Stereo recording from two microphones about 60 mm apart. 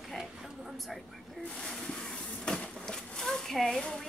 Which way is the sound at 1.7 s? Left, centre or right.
Centre.